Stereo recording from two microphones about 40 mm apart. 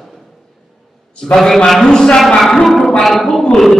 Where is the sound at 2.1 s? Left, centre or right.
Centre.